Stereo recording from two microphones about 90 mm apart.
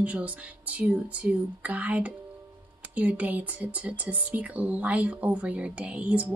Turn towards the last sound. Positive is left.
turn(degrees=-15)  # may be behind; listen again after turning